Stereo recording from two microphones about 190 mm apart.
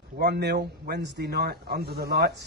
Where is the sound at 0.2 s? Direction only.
60° right (ahead or behind).